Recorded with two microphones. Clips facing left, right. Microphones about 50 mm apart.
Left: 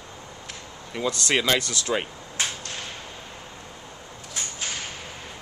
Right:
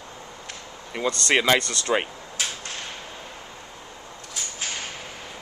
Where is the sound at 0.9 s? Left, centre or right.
Centre.